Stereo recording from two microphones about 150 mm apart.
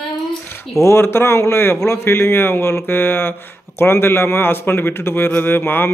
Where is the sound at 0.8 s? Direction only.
15° left (ahead or behind).